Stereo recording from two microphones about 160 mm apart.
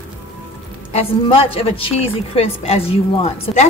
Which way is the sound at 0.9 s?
35° left (ahead or behind).